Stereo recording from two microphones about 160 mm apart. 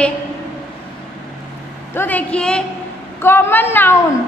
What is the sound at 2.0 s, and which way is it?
A woman's voice, 10° left (ahead or behind).